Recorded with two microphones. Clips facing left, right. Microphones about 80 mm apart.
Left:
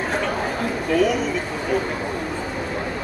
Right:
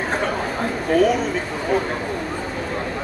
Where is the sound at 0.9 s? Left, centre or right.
Right.